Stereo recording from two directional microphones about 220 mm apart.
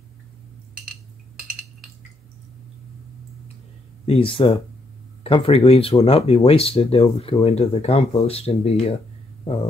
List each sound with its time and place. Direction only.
4.0 s speech: 25° left (ahead or behind)